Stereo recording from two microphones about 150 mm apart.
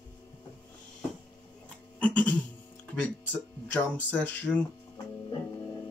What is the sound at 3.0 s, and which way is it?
Speech, 10° left (ahead or behind).